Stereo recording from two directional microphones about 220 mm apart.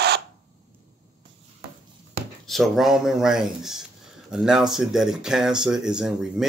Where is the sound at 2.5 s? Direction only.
Centre (ahead or behind).